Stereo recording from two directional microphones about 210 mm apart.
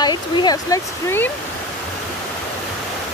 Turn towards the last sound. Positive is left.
turn(degrees=15)  # may be behind; listen again after turning